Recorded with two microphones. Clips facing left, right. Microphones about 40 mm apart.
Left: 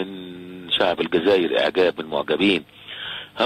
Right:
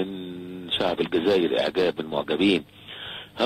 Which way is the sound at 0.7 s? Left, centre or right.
Left.